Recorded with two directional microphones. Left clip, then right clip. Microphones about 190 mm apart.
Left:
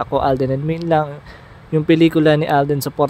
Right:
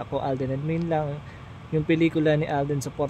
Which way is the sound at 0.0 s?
40° left (ahead or behind).